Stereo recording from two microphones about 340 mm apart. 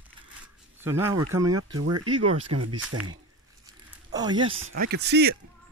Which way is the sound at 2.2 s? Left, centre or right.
Right.